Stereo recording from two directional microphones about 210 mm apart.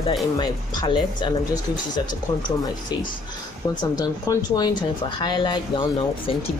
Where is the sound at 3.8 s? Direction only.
20° left (ahead or behind).